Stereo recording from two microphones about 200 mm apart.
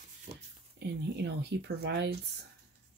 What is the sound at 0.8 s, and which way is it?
Speech, 60° right (ahead or behind).